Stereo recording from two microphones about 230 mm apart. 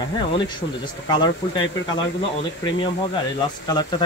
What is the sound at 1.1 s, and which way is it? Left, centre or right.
Speech, centre.